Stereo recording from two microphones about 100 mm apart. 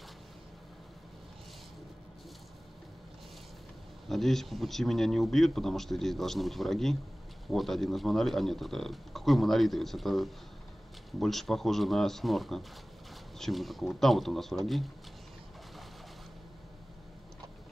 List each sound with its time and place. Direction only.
4.1 s speech: centre (ahead or behind)